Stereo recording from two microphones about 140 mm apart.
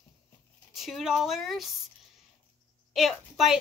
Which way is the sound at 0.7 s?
Centre (ahead or behind).